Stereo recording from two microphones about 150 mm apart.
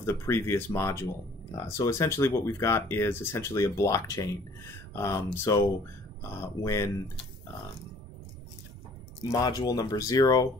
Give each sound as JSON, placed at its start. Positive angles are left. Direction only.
{"t": 0.0, "sound": "speech", "side_deg": 15}
{"t": 9.3, "sound": "speech", "side_deg": 25}